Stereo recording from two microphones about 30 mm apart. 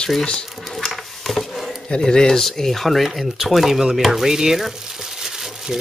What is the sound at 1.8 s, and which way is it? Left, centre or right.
Speech, left.